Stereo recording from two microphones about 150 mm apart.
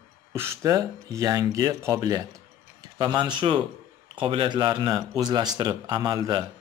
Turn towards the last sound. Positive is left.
turn(degrees=-30)  # may be behind; listen again after turning